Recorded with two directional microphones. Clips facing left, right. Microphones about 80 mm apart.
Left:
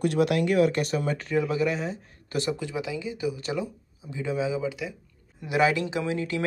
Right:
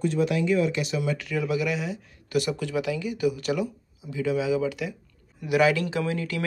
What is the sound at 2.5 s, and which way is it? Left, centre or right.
Speech, left.